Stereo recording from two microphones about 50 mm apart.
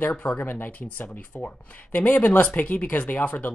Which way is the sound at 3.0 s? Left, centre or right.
Left.